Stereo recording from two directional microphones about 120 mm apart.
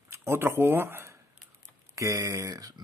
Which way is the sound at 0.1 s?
20° right (ahead or behind).